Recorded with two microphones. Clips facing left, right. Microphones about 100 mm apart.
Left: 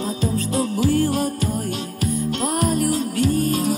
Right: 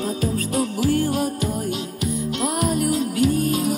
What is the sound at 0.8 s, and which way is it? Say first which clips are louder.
Music: left 2 dB; 10° right (ahead or behind).